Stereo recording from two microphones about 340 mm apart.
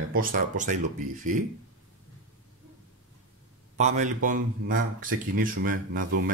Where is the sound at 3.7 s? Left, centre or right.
Right.